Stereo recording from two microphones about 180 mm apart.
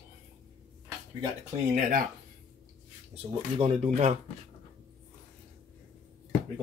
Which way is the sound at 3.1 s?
35° right (ahead or behind).